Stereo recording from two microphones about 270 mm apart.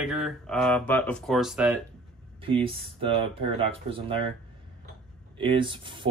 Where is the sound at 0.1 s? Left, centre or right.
Centre.